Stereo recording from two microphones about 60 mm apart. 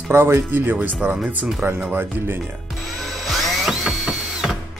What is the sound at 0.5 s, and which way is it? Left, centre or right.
Speech, right.